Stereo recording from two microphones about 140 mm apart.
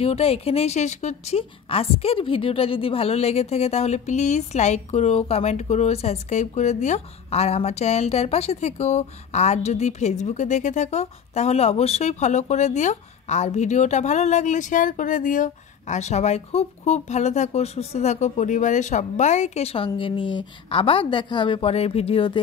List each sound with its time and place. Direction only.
0.0 s a woman's voice: 45° left (ahead or behind)